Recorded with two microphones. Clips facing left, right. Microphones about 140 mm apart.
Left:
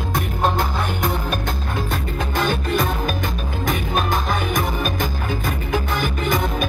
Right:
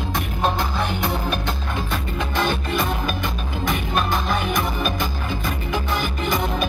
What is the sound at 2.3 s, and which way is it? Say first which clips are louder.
Music: left 2 dB; 45° left (ahead or behind).